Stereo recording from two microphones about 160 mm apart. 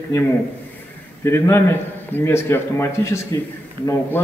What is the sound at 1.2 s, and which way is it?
A man's voice, 15° left (ahead or behind).